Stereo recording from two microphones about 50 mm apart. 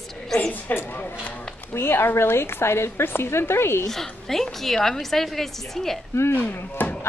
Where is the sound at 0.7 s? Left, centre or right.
Left.